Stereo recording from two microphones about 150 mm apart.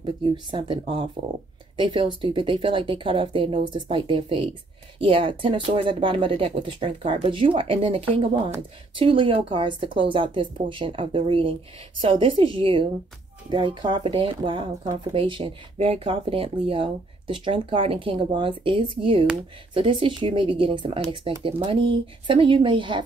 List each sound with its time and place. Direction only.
0.0 s speech: 35° right (ahead or behind)